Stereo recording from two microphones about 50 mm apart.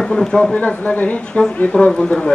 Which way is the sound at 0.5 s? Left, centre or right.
Left.